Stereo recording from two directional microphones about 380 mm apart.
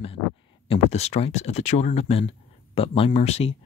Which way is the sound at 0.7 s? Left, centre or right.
Centre.